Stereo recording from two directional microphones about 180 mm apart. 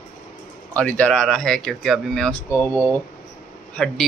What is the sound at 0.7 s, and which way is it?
A man's voice, 5° left (ahead or behind).